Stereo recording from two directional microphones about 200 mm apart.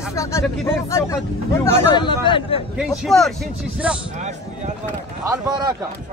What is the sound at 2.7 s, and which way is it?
A man's voice, centre (ahead or behind).